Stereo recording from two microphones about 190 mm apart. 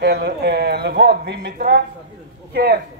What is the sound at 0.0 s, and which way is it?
A man's voice, 60° right (ahead or behind).